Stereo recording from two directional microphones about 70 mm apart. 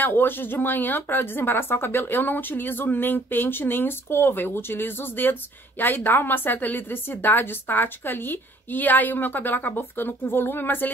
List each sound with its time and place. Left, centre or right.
0.0 s speech: left